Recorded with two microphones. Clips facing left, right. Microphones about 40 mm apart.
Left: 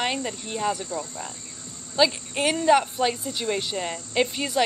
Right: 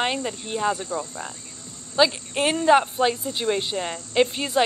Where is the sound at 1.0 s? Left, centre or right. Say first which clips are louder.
Right 2 dB; centre.